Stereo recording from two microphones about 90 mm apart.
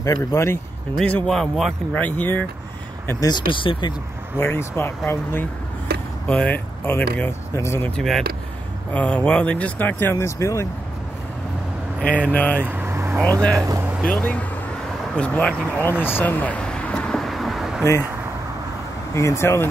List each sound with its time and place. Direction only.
0.0 s speech: 35° left (ahead or behind)
1.0 s speech: 15° left (ahead or behind)
1.3 s speech: 5° left (ahead or behind)
2.0 s speech: 20° left (ahead or behind)
3.2 s speech: 55° left (ahead or behind)
4.4 s speech: 25° left (ahead or behind)
7.9 s speech: 5° left (ahead or behind)
8.9 s speech: 15° left (ahead or behind)
10.1 s speech: 35° left (ahead or behind)
12.3 s speech: 15° left (ahead or behind)
12.6 s vehicle: 25° right (ahead or behind)
13.2 s speech: 15° left (ahead or behind)
15.1 s vehicle: 15° left (ahead or behind); by 17.8 s 5° right (ahead or behind)
19.1 s speech: 30° left (ahead or behind)